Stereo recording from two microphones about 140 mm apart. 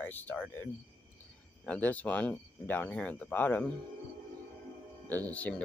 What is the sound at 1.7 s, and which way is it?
Speech, 10° left (ahead or behind).